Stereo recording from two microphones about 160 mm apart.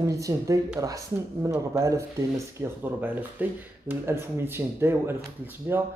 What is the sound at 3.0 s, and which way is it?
Speech, 10° right (ahead or behind).